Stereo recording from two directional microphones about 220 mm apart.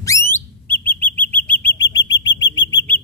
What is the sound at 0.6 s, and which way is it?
Chirp, 10° left (ahead or behind).